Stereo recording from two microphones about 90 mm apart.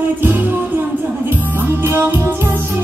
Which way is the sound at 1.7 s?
25° right (ahead or behind).